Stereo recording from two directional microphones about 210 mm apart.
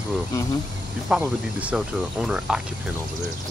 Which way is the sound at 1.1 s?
5° right (ahead or behind).